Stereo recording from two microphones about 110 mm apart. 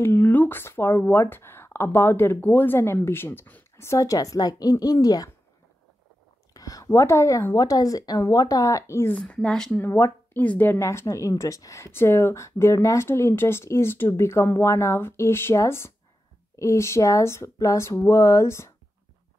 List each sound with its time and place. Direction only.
0.0 s a woman's voice: 20° left (ahead or behind)
6.5 s a woman's voice: 30° left (ahead or behind)
9.1 s speech: 10° left (ahead or behind)
9.8 s a woman's voice: 25° left (ahead or behind)
10.8 s a woman's voice: 25° left (ahead or behind)